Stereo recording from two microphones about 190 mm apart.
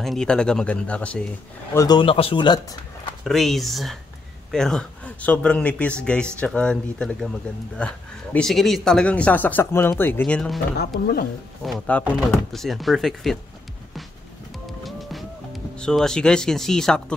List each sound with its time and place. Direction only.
0.0 s speech: centre (ahead or behind)
1.7 s speech: 20° left (ahead or behind)
3.3 s speech: centre (ahead or behind)
11.6 s speech: centre (ahead or behind)
14.7 s music: centre (ahead or behind)